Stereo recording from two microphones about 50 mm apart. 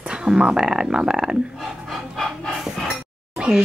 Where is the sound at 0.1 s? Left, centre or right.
Centre.